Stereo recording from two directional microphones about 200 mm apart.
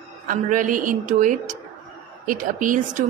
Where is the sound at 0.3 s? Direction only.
40° right (ahead or behind).